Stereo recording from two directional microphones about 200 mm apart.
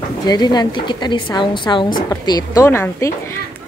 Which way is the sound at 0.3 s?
20° left (ahead or behind).